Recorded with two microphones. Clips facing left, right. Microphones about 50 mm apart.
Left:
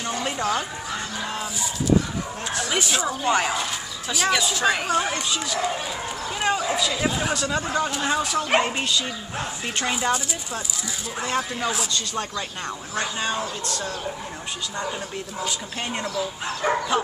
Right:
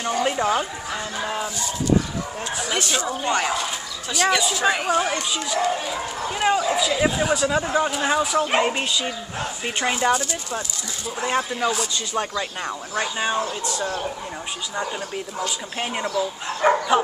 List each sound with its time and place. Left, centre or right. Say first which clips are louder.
0.2 s speech: right 4 dB; centre
2.5 s speech: even; centre
11.2 s speech: right 3 dB; centre
15.4 s speech: right 1 dB; centre
16.6 s dog: right 5 dB; right